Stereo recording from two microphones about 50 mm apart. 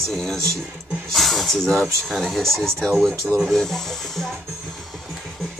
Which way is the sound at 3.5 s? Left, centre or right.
Centre.